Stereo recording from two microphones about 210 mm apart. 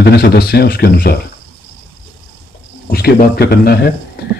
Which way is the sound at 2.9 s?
45° left (ahead or behind).